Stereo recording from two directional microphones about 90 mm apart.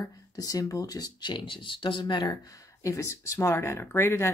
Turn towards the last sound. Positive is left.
turn(degrees=25)  # may be behind; listen again after turning